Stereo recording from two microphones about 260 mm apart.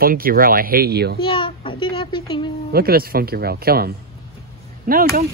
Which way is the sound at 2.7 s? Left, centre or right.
Right.